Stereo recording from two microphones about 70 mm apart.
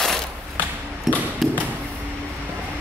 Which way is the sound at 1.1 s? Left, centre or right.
Centre.